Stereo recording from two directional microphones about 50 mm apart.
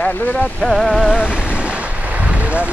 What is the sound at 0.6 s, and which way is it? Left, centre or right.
Music, centre.